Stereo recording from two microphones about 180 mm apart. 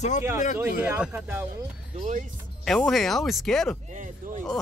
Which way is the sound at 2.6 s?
Centre (ahead or behind).